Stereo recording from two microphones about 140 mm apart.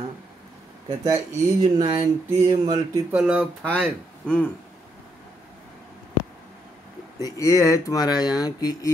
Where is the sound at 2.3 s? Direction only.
20° right (ahead or behind).